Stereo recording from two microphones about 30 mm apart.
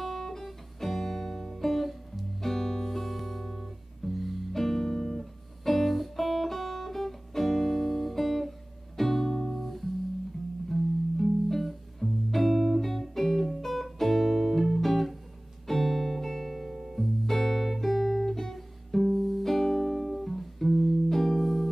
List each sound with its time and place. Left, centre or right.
0.0 s music: centre
2.4 s music: centre
18.3 s guitar: centre
19.1 s music: centre